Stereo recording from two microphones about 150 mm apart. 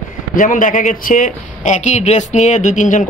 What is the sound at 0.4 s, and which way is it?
A man's voice, 60° left (ahead or behind).